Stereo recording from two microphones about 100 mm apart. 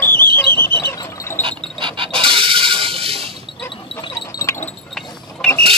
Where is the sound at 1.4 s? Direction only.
55° right (ahead or behind).